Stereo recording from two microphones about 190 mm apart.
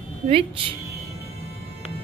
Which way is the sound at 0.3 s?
30° right (ahead or behind).